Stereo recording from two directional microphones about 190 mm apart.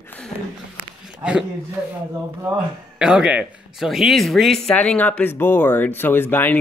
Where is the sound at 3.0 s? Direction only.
5° right (ahead or behind).